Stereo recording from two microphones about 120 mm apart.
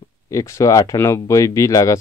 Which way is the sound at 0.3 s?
25° left (ahead or behind).